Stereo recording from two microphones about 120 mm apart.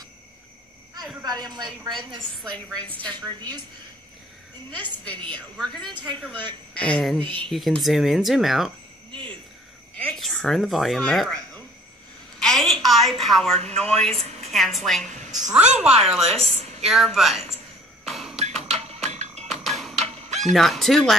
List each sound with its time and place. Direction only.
1.2 s speech: 35° right (ahead or behind)
5.0 s a woman's voice: 10° left (ahead or behind)
9.1 s a sound: 40° right (ahead or behind)
10.0 s speech: centre (ahead or behind)
12.4 s a sound: 5° left (ahead or behind)
13.7 s a woman's voice: 5° left (ahead or behind)
14.1 s a sound: 60° right (ahead or behind)
14.5 s a woman's voice: centre (ahead or behind)
16.2 s a woman's voice: 60° right (ahead or behind)
16.9 s speech: centre (ahead or behind)
18.0 s a sound: centre (ahead or behind)
18.4 s music: 60° right (ahead or behind)
19.6 s music: centre (ahead or behind)